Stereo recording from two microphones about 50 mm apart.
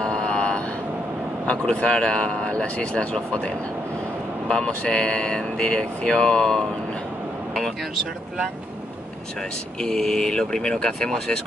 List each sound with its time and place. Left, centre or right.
0.0 s vehicle: centre
1.5 s speech: left
4.5 s speech: centre
9.8 s speech: centre